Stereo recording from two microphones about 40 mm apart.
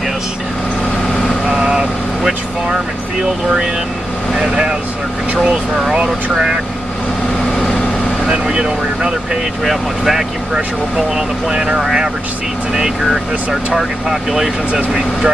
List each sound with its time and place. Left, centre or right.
1.5 s vehicle: centre
4.4 s speech: right
6.3 s speech: centre
8.3 s speech: centre
9.7 s speech: centre
11.1 s speech: centre